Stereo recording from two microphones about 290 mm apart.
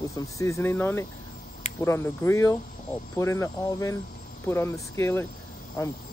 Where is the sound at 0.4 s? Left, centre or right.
Centre.